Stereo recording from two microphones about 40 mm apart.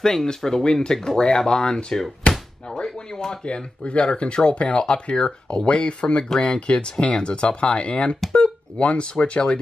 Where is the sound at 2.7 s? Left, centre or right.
Centre.